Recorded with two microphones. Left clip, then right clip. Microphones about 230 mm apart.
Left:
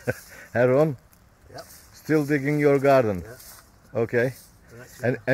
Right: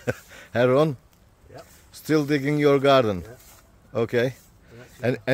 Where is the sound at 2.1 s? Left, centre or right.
Centre.